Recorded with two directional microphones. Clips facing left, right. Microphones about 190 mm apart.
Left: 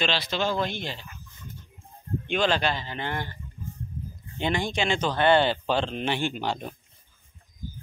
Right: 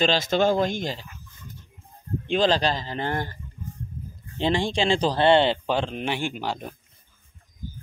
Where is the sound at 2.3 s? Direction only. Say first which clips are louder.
Right 3 dB; 35° right (ahead or behind).